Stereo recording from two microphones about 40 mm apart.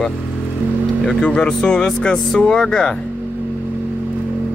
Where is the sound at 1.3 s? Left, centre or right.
Left.